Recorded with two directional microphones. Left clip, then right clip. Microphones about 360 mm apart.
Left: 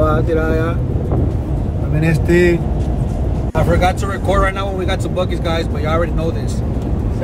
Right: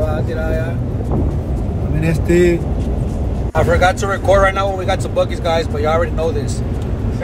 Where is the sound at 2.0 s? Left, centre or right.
Centre.